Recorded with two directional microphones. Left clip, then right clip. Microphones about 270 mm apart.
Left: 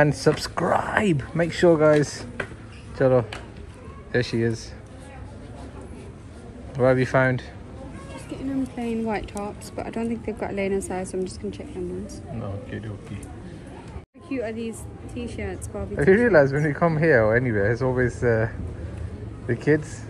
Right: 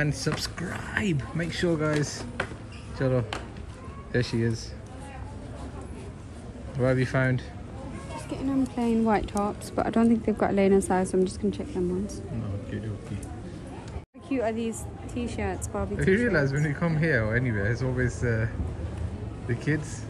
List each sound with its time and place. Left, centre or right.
0.0 s speech: centre
6.8 s speech: centre
8.7 s speech: right
12.7 s speech: centre
14.3 s speech: right
14.6 s speech: centre
15.4 s speech: right
16.0 s speech: centre